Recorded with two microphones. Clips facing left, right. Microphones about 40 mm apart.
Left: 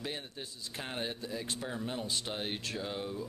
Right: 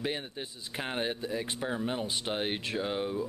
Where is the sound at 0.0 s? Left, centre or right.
Right.